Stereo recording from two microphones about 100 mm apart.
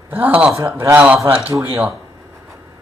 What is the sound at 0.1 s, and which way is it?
Speech, 15° right (ahead or behind).